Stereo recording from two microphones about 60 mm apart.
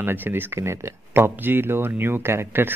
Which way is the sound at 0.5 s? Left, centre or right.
Right.